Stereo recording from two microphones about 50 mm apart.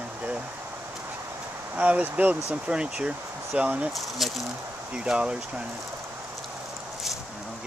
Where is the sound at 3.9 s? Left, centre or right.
Centre.